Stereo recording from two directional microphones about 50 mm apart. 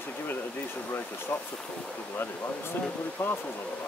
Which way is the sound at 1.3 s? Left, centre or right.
Left.